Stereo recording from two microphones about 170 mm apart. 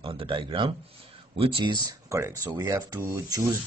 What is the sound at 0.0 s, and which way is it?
Speech, 30° right (ahead or behind).